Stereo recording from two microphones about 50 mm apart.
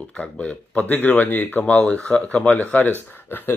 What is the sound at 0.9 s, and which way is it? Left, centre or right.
Speech, left.